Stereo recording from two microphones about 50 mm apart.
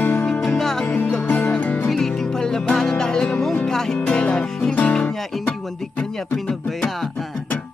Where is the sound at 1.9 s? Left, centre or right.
Centre; by 4.9 s left.